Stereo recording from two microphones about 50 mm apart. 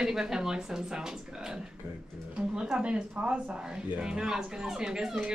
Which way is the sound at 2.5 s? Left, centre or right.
Centre.